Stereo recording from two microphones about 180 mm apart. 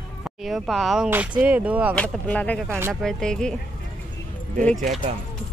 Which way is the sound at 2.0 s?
10° left (ahead or behind).